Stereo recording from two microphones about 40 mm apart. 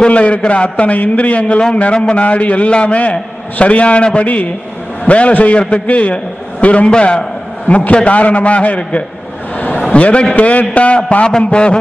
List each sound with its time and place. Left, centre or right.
0.0 s a man's voice: left
7.6 s a man's voice: left
11.2 s a man's voice: left